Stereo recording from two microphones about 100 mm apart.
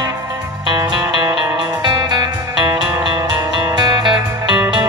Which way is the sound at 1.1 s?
50° right (ahead or behind).